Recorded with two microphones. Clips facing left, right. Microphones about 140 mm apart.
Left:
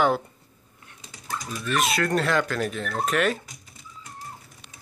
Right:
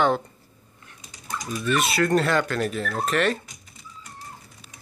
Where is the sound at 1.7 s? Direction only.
Centre (ahead or behind).